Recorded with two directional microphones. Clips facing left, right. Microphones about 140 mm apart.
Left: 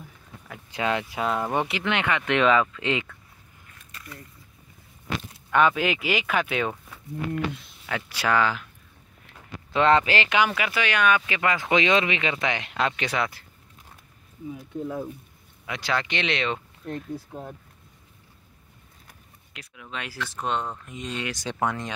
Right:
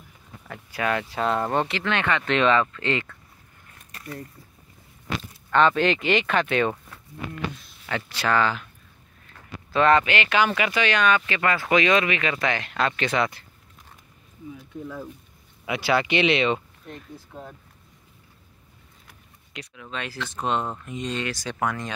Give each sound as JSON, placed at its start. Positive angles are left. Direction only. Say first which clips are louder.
{"t": 0.7, "sound": "speech", "louder": "even", "side_deg": 20}
{"t": 1.1, "sound": "speech", "louder": "right 2 dB", "side_deg": 5}
{"t": 3.9, "sound": "a sound", "louder": "right 7 dB", "side_deg": -40}
{"t": 5.5, "sound": "speech", "louder": "right 2 dB", "side_deg": 10}
{"t": 7.8, "sound": "speech", "louder": "right 1 dB", "side_deg": 10}
{"t": 9.3, "sound": "a sound", "louder": "right 1 dB", "side_deg": 20}
{"t": 10.0, "sound": "speech", "louder": "even", "side_deg": 30}
{"t": 10.3, "sound": "speech", "louder": "right 3 dB", "side_deg": 5}
{"t": 15.6, "sound": "speech", "louder": "right 5 dB", "side_deg": -10}
{"t": 19.7, "sound": "speech", "louder": "right 2 dB", "side_deg": 10}
{"t": 20.3, "sound": "speech", "louder": "right 2 dB", "side_deg": -5}